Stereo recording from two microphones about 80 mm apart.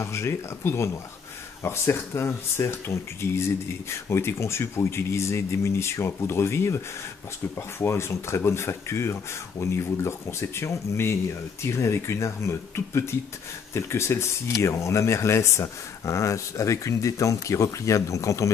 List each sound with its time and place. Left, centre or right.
0.0 s speech: left
7.8 s speech: left